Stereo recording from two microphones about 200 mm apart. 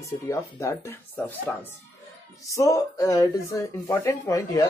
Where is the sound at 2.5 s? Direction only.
15° left (ahead or behind).